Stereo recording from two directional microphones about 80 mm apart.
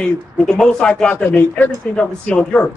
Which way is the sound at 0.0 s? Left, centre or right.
Centre.